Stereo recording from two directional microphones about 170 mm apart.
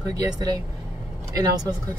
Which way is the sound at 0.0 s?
25° right (ahead or behind).